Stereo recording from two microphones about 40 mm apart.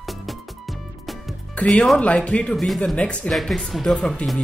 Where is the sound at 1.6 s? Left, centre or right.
Left.